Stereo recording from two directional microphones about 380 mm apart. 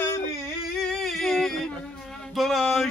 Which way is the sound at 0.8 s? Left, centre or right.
Centre.